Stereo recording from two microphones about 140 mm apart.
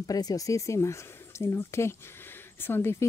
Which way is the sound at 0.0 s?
25° left (ahead or behind).